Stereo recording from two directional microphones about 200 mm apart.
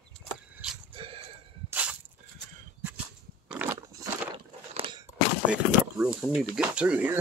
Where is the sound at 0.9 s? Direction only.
30° right (ahead or behind).